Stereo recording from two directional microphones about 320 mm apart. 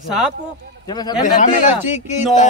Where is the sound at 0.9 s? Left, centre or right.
Centre.